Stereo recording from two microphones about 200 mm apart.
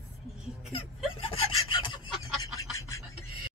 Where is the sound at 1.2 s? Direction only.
25° left (ahead or behind).